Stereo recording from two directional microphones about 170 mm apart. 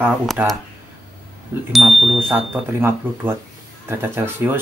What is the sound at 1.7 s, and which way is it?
Speech, centre (ahead or behind).